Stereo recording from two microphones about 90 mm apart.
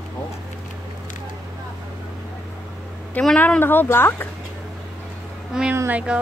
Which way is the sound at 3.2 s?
15° left (ahead or behind).